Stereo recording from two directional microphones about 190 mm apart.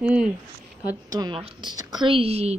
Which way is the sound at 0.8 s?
20° right (ahead or behind).